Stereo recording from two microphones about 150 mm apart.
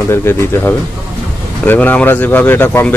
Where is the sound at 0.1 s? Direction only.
15° left (ahead or behind).